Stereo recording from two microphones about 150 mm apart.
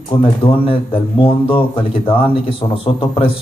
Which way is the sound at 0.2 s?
35° left (ahead or behind).